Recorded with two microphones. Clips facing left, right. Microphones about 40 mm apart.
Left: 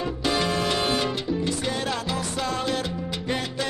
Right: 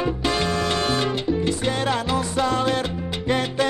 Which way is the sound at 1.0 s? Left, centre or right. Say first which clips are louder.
Right 4 dB; right.